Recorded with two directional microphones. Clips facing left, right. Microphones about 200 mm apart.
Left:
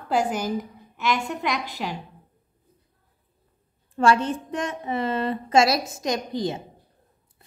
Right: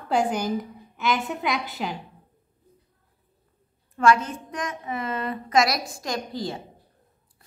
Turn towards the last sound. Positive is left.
turn(degrees=20)  # may be behind; listen again after turning